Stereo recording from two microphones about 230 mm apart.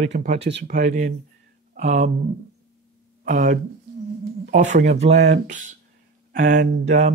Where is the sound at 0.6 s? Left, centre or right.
Right.